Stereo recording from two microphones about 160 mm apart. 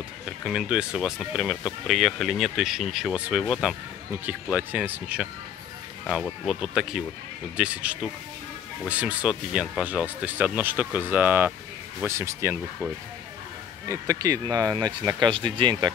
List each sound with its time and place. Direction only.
0.5 s speech: 5° right (ahead or behind)
13.8 s speech: 20° right (ahead or behind)